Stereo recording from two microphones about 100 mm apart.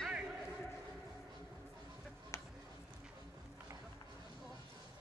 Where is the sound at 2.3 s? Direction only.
30° left (ahead or behind).